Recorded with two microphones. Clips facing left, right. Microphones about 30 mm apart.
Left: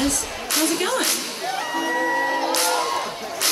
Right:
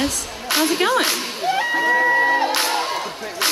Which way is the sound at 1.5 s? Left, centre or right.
Right.